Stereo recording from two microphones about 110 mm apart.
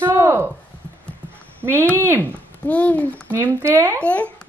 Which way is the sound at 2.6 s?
15° left (ahead or behind).